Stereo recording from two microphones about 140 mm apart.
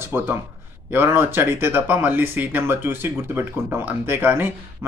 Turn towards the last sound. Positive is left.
turn(degrees=-15)  # may be behind; listen again after turning